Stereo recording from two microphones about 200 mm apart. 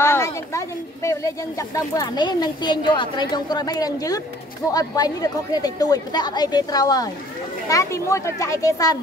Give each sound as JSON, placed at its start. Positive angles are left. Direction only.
{"t": 0.0, "sound": "speech", "side_deg": 15}